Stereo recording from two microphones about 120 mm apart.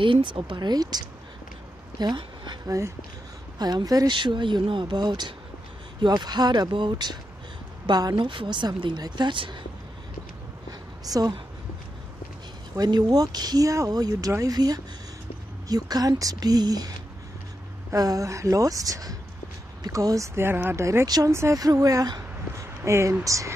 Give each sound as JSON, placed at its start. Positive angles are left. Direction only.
{"t": 0.0, "sound": "a woman's voice", "side_deg": -45}
{"t": 2.6, "sound": "a woman's voice", "side_deg": -25}
{"t": 11.1, "sound": "a woman's voice", "side_deg": -35}
{"t": 12.7, "sound": "a woman's voice", "side_deg": -35}
{"t": 17.9, "sound": "speech", "side_deg": -30}